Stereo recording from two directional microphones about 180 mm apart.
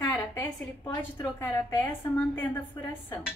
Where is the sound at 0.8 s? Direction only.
15° left (ahead or behind).